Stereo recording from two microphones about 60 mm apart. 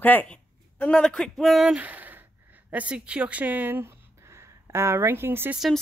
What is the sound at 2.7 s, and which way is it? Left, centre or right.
Speech, right.